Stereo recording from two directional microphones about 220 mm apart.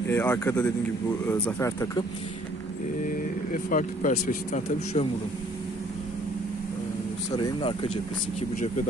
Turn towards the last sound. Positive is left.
turn(degrees=25)  # may be behind; listen again after turning